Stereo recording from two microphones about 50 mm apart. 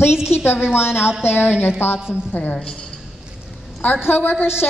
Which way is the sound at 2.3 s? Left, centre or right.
Left.